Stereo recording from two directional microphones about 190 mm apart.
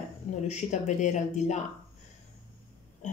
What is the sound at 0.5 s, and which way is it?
Speech, 40° left (ahead or behind).